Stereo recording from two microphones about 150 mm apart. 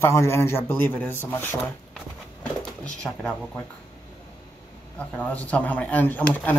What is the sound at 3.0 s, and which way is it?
Speech, 5° left (ahead or behind).